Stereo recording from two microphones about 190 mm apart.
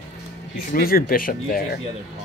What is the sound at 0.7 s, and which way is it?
Speech, 50° left (ahead or behind).